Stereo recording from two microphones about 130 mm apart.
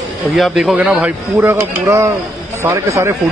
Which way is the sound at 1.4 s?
20° right (ahead or behind).